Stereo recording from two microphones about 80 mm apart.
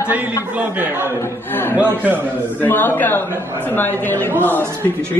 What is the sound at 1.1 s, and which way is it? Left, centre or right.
A woman's voice, left.